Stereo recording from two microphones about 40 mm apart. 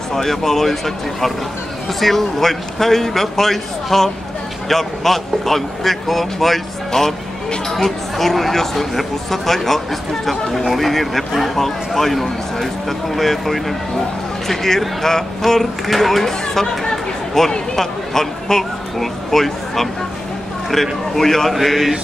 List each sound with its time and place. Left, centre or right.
0.1 s speech: centre
6.9 s speech: centre